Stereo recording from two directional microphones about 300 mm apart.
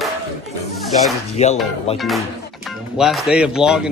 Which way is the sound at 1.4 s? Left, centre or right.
Left.